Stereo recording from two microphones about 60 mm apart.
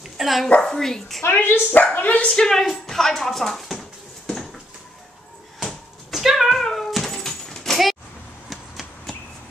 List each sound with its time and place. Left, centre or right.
0.2 s a woman's voice: centre
1.2 s speech: left
2.3 s speech: centre
4.3 s a sound: centre
6.1 s cat: centre
8.5 s a sound: centre